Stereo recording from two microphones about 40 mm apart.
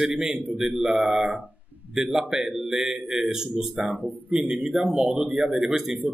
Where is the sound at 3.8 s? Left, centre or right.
Right.